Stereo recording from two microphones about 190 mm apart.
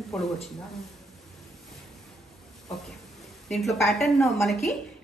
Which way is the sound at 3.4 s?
Centre (ahead or behind).